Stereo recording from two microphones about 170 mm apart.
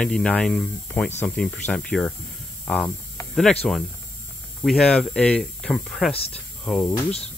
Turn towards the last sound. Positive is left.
turn(degrees=5)  # may be behind; listen again after turning